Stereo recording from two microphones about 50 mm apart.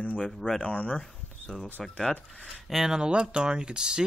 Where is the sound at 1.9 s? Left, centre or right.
Centre.